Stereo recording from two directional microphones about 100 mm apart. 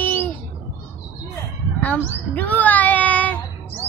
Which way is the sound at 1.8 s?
15° left (ahead or behind).